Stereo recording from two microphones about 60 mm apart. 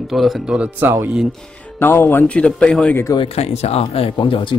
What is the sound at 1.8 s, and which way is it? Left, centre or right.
Speech, left.